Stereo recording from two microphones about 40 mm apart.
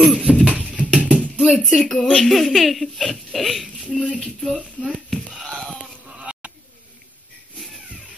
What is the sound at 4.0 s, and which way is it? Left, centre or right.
Speech, left.